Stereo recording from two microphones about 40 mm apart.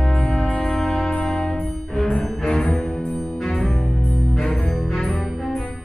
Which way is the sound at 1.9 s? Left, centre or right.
Centre.